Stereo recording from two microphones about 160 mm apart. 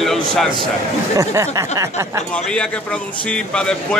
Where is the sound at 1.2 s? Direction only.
20° right (ahead or behind).